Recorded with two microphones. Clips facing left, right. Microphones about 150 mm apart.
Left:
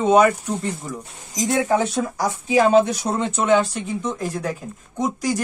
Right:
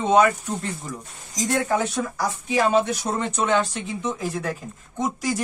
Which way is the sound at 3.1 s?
15° left (ahead or behind).